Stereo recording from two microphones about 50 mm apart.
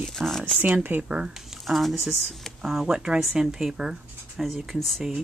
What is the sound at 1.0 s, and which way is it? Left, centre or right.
Speech, right.